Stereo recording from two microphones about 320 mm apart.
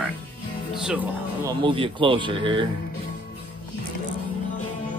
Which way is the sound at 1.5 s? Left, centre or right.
Centre.